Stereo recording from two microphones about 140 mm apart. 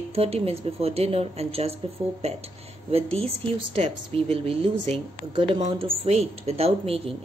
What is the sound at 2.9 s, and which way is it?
Speech, 45° right (ahead or behind).